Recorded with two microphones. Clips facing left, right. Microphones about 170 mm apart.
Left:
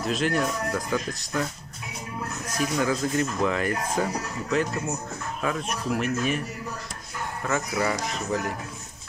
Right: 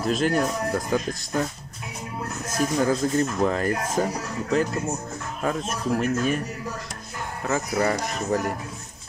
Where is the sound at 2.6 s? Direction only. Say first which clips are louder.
Right 3 dB; 40° right (ahead or behind).